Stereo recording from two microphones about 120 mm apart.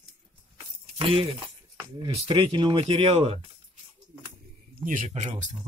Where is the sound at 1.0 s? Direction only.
50° right (ahead or behind).